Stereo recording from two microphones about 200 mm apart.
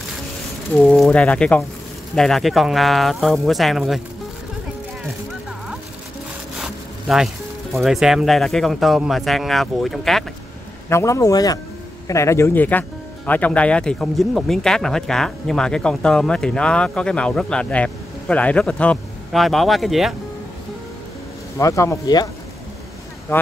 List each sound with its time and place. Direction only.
0.7 s speech: centre (ahead or behind)
6.6 s zipper: centre (ahead or behind)
7.8 s speech: centre (ahead or behind)
10.9 s speech: 15° left (ahead or behind); by 20.2 s centre (ahead or behind)
21.5 s speech: 15° left (ahead or behind)
23.3 s speech: 10° left (ahead or behind)